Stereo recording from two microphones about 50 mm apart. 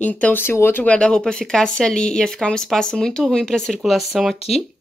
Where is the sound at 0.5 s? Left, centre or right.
Left.